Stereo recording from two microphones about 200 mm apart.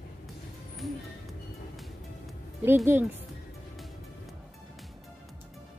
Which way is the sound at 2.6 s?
10° right (ahead or behind).